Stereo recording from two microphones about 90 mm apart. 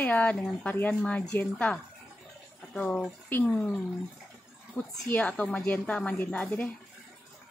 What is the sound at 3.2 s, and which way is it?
Speech, 25° left (ahead or behind).